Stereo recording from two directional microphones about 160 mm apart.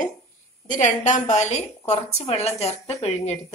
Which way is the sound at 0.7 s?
50° left (ahead or behind).